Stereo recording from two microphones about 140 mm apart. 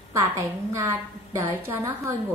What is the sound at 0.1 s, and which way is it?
A woman's voice, 20° right (ahead or behind).